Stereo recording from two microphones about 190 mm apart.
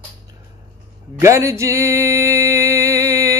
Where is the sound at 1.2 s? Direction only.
15° right (ahead or behind).